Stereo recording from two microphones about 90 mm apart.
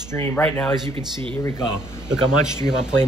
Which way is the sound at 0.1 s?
25° left (ahead or behind).